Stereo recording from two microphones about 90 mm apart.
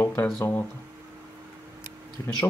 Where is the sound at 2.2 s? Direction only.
20° left (ahead or behind).